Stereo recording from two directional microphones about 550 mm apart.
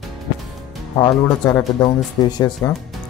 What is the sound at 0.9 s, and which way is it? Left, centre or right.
Speech, centre.